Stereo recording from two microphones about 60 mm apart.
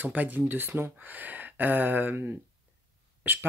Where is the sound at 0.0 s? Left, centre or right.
Right.